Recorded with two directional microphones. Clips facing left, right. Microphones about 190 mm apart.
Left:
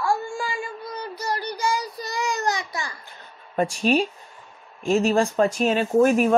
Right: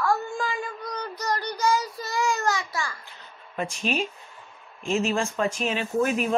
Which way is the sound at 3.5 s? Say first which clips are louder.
Left 7 dB; 35° left (ahead or behind).